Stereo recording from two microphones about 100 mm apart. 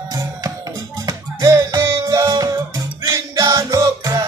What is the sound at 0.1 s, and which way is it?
Music, 40° right (ahead or behind).